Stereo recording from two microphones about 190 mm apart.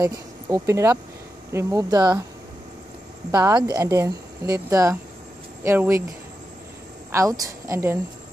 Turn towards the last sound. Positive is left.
turn(degrees=-15)  # may be behind; listen again after turning